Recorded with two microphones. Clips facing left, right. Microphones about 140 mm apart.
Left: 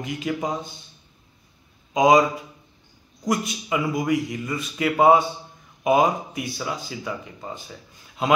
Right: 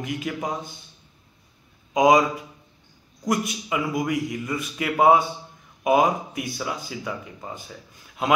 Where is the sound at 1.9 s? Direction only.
5° right (ahead or behind).